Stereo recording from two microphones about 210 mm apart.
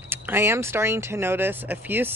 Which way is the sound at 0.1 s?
10° right (ahead or behind).